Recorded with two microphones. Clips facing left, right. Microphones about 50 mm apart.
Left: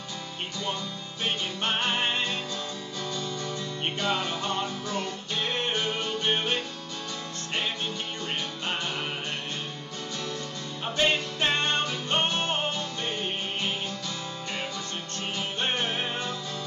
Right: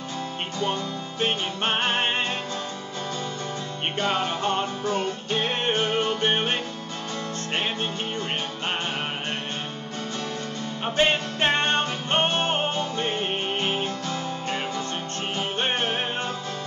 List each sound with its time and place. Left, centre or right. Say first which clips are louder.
1.2 s music: right 4 dB; right
4.0 s music: right 5 dB; right
11.0 s music: right 3 dB; right
15.3 s music: right 3 dB; right